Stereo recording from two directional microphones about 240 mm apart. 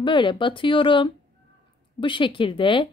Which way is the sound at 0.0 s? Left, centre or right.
Centre.